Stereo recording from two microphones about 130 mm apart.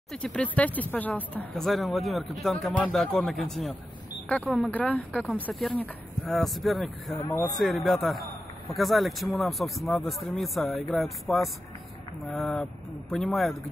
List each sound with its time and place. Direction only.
0.1 s speech: 10° left (ahead or behind)
7.1 s speech: 35° left (ahead or behind)
7.5 s speech: centre (ahead or behind)